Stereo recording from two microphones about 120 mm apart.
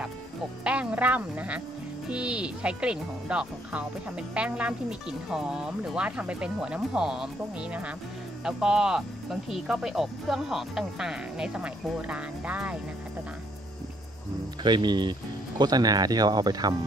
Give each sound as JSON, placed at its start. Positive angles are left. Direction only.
{"t": 0.7, "sound": "speech", "side_deg": -10}
{"t": 14.6, "sound": "speech", "side_deg": -40}